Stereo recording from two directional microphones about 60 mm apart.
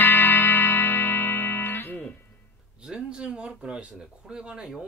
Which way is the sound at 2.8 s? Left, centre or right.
Centre.